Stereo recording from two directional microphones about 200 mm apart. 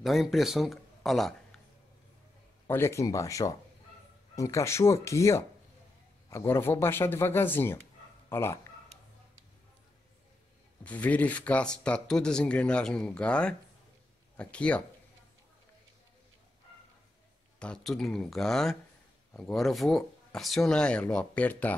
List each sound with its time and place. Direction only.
0.0 s speech: centre (ahead or behind)
2.6 s speech: 15° left (ahead or behind)
10.8 s speech: 5° left (ahead or behind)
17.6 s speech: 5° left (ahead or behind)